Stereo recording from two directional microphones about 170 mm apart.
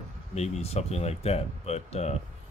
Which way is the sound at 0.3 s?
40° left (ahead or behind).